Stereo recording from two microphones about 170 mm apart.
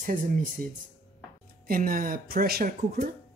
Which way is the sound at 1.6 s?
60° right (ahead or behind).